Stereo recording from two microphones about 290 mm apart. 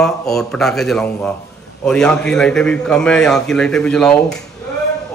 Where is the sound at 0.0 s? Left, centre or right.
Centre.